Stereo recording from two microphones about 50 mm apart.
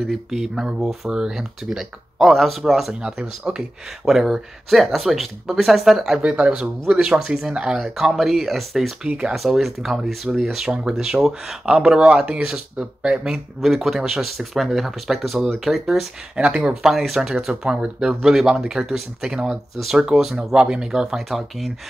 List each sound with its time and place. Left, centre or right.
0.0 s speech: centre
1.1 s speech: centre
2.1 s speech: centre
2.9 s speech: centre
6.2 s speech: right; by 8.9 s centre
9.0 s speech: centre
9.3 s speech: centre
13.6 s speech: centre
16.3 s speech: centre
16.8 s speech: centre
17.6 s speech: centre
18.2 s speech: centre